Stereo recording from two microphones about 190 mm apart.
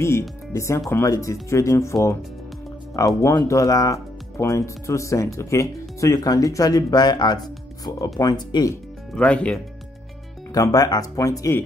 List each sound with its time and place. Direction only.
0.5 s speech: 15° left (ahead or behind)
3.2 s speech: 15° left (ahead or behind)
9.1 s speech: 5° left (ahead or behind)
10.5 s speech: 20° left (ahead or behind)